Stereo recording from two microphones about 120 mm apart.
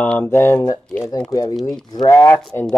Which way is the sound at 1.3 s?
30° left (ahead or behind).